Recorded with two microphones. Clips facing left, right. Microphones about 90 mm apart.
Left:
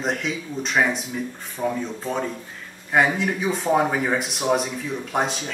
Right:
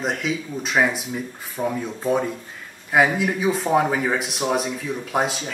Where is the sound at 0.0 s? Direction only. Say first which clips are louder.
Right 1 dB; centre (ahead or behind).